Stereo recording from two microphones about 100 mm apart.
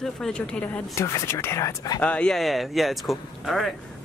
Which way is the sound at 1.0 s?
30° left (ahead or behind).